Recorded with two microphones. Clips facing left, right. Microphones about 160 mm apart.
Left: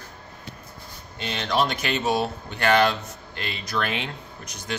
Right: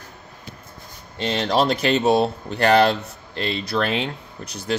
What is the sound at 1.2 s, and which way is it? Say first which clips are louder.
Speech: right 4 dB; 35° right (ahead or behind).